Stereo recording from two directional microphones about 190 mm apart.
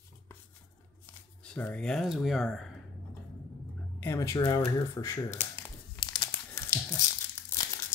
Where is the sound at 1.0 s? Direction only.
10° left (ahead or behind).